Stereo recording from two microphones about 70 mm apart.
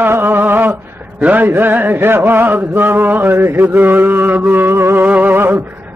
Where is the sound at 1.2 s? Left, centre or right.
Right.